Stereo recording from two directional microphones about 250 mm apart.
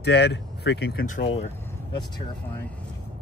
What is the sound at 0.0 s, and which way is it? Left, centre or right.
Speech, left.